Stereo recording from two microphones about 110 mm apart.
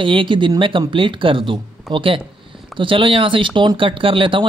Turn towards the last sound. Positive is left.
turn(degrees=-50)  # may be behind; listen again after turning